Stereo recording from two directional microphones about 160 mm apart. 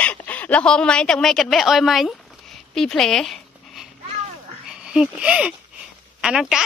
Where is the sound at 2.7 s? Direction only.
Centre (ahead or behind).